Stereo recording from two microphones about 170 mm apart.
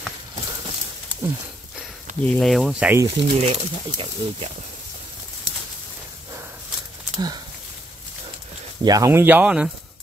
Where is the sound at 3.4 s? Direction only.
35° right (ahead or behind).